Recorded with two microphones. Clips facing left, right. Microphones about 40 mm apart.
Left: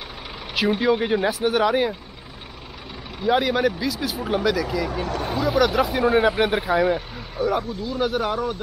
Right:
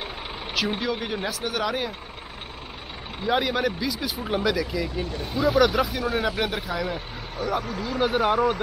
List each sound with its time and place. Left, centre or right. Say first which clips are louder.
0.7 s speech: left 8 dB; centre
3.3 s speech: left 4 dB; centre
5.0 s speech: left 6 dB; left
5.4 s speech: even; centre
5.9 s speech: left 7 dB; left
6.9 s speech: left 7 dB; centre